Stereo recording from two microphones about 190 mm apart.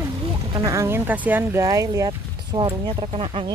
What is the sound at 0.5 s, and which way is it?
Speech, 15° right (ahead or behind).